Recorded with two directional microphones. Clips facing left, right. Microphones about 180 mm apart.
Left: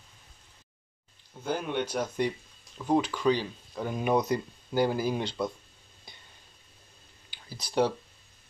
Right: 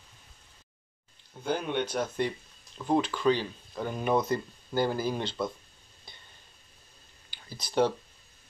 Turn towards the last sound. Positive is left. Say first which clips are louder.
# even
turn(degrees=10)  # may be behind; listen again after turning